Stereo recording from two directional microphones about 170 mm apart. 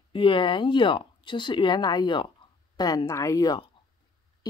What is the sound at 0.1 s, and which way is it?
Speech, 30° left (ahead or behind).